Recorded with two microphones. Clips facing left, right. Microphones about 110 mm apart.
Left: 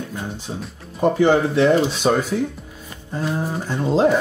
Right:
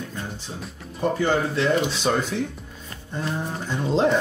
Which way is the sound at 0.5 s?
15° left (ahead or behind).